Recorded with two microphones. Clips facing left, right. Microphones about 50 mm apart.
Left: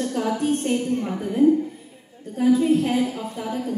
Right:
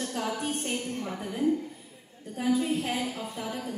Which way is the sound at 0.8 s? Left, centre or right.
Left.